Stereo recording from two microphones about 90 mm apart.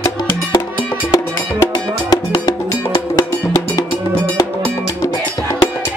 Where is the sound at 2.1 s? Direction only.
45° left (ahead or behind).